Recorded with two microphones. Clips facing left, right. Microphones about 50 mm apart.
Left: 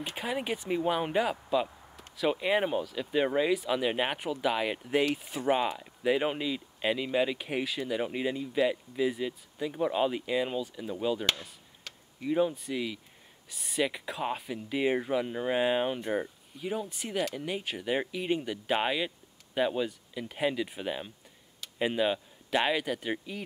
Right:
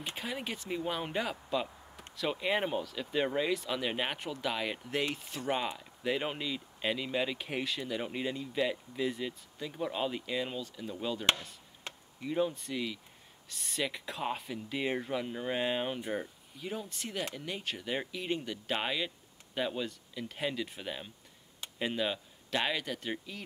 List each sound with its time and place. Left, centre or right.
0.0 s speech: centre
11.9 s tick-tock: right
12.2 s speech: centre